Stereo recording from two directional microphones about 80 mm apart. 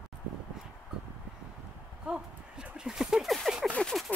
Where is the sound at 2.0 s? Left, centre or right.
Centre.